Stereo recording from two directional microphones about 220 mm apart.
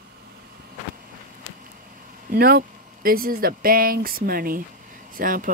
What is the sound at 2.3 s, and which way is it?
Speech, 40° right (ahead or behind).